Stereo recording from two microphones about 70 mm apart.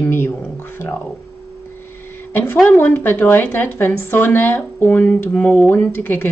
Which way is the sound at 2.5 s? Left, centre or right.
Centre.